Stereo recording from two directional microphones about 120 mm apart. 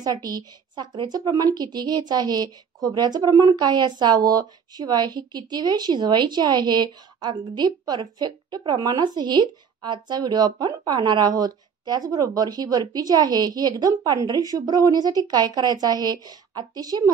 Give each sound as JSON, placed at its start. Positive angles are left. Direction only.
{"t": 0.0, "sound": "a woman's voice", "side_deg": -30}